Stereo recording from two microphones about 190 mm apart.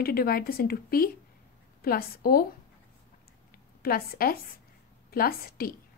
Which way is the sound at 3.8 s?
50° left (ahead or behind).